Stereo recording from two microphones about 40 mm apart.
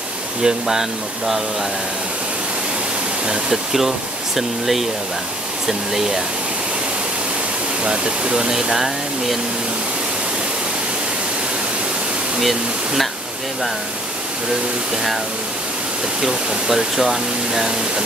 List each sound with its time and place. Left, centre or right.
0.4 s speech: centre
4.4 s speech: centre
7.8 s speech: right; by 9.4 s centre
12.4 s speech: centre
16.2 s speech: centre